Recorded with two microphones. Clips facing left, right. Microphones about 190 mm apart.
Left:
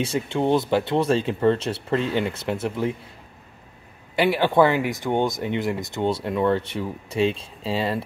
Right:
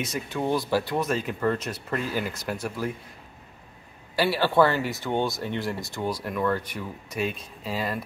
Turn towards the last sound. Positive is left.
turn(degrees=30)  # may be behind; listen again after turning